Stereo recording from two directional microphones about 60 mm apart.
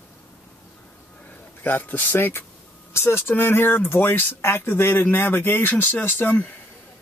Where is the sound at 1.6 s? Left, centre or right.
Left.